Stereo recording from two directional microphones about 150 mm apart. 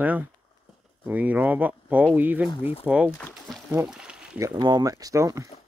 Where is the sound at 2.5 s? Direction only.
40° left (ahead or behind).